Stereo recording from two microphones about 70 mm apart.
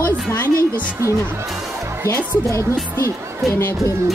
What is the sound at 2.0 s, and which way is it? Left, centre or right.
Speech, left.